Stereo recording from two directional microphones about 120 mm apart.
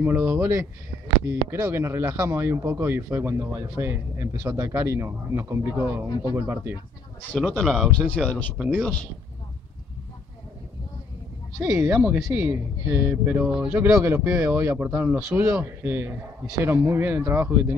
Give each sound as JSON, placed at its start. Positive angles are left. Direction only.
{"t": 0.0, "sound": "speech", "side_deg": -20}
{"t": 7.3, "sound": "speech", "side_deg": 0}
{"t": 8.1, "sound": "speech", "side_deg": 10}
{"t": 12.0, "sound": "speech", "side_deg": -15}